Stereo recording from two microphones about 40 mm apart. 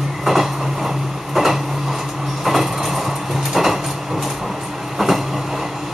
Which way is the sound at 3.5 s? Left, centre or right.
Centre.